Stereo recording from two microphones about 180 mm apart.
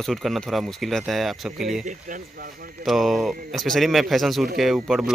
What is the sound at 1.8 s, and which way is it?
Speech, 45° right (ahead or behind).